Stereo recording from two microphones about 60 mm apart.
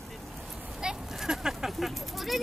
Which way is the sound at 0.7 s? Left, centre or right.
Centre.